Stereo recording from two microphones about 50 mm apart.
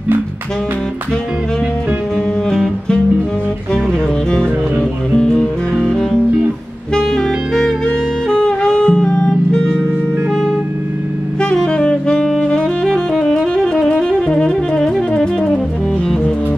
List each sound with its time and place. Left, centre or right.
5.1 s music: centre
6.9 s saxophone: centre
11.4 s saxophone: centre
13.8 s saxophone: left